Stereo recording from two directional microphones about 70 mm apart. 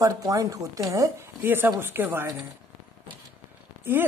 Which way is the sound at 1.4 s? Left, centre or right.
Right.